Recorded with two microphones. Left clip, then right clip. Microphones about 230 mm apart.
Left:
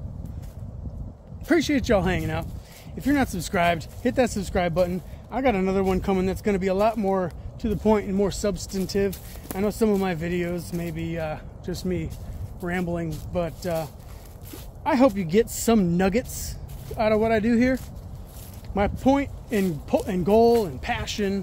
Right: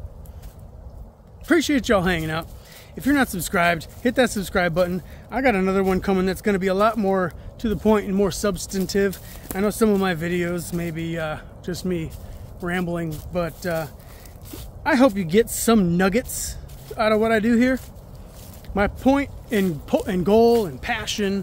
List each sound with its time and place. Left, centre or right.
1.5 s speech: centre